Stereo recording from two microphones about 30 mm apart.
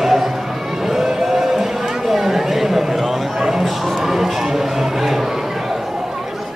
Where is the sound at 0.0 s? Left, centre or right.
Centre.